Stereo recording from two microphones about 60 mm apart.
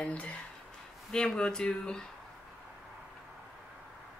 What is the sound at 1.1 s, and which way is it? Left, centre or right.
Speech, centre.